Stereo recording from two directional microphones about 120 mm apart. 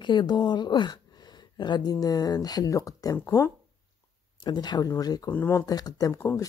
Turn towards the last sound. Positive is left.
turn(degrees=30)  # may be behind; listen again after turning